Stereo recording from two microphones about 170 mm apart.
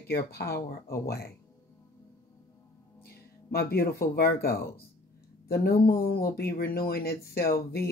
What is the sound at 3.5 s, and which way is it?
Speech, 60° left (ahead or behind).